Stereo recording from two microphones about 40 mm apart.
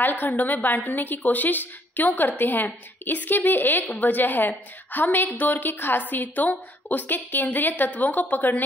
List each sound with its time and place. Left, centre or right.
0.0 s a woman's voice: left